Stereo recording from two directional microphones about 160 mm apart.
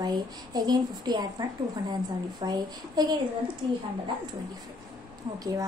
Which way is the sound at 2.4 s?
25° right (ahead or behind).